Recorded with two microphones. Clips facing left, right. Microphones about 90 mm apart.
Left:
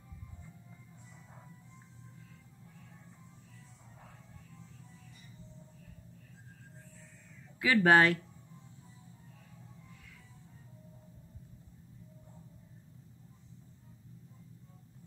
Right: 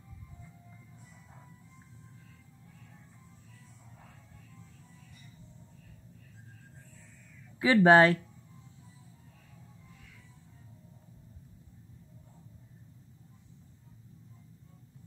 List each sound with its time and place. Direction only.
7.6 s speech: 25° right (ahead or behind)